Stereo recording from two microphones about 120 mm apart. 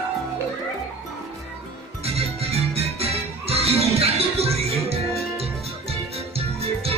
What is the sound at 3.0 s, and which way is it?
Music, 55° right (ahead or behind).